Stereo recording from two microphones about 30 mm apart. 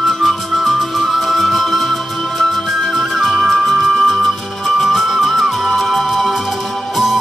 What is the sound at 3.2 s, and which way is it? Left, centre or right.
Music, centre.